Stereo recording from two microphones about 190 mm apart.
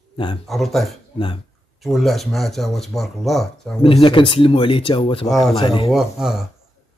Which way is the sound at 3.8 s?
25° left (ahead or behind).